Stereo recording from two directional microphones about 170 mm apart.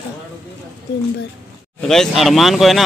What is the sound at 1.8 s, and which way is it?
Speech, centre (ahead or behind).